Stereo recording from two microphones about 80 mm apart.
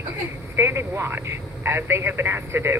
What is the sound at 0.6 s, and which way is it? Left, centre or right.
Speech, right.